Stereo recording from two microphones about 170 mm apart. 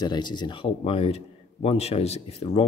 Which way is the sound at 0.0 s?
25° left (ahead or behind).